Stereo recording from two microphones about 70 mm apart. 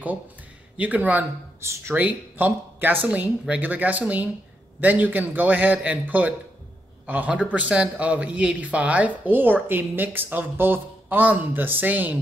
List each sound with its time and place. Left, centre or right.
0.7 s speech: right
1.6 s speech: right
2.0 s speech: right